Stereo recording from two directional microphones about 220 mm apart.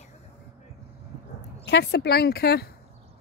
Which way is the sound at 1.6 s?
50° left (ahead or behind).